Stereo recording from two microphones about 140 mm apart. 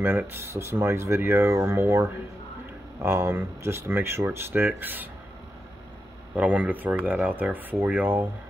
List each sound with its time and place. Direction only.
0.3 s speech: 20° right (ahead or behind)
6.3 s speech: 10° right (ahead or behind)